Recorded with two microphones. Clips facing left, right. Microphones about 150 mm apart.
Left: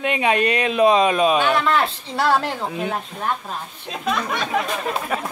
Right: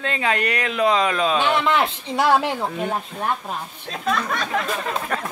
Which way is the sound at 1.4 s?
20° right (ahead or behind).